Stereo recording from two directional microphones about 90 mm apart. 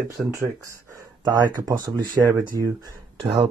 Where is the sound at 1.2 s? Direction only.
45° right (ahead or behind).